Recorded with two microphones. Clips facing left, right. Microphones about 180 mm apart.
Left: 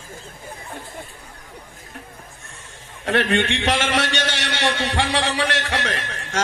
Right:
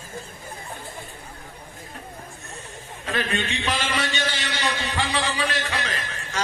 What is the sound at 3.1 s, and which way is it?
A man's voice, 75° left (ahead or behind).